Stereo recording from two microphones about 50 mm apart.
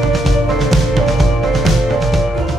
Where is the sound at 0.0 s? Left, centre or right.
Centre.